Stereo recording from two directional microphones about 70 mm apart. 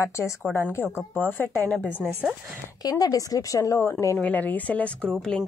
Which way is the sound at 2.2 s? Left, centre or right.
Centre.